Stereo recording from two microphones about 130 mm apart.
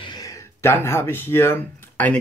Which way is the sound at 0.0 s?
30° left (ahead or behind).